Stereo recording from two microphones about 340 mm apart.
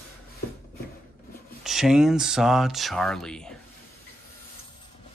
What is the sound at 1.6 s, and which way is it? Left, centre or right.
Speech, centre.